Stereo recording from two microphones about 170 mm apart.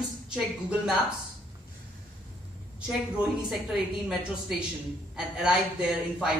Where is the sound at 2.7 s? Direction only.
5° right (ahead or behind).